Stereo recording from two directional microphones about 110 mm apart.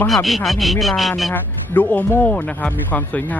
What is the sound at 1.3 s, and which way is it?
Speech, 15° left (ahead or behind).